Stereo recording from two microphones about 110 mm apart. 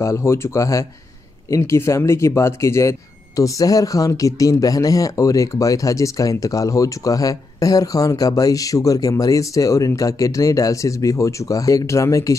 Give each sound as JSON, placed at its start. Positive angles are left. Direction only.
{"t": 0.0, "sound": "speech", "side_deg": 25}